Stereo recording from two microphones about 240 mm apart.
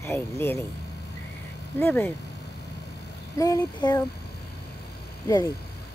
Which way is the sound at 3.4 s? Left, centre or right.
Centre.